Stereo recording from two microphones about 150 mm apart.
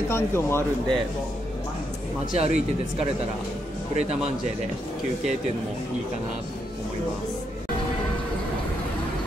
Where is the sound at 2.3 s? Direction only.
45° right (ahead or behind).